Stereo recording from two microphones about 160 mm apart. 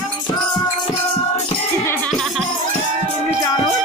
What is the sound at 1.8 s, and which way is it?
Music, 15° left (ahead or behind).